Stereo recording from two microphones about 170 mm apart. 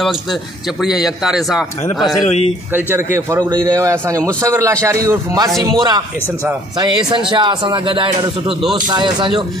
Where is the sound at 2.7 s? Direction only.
15° right (ahead or behind).